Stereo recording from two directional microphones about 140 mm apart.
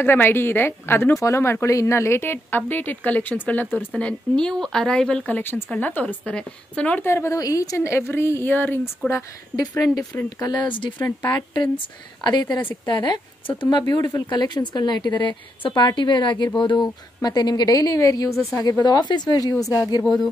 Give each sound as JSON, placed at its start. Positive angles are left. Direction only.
{"t": 0.0, "sound": "speech", "side_deg": 15}
{"t": 10.4, "sound": "a woman's voice", "side_deg": 30}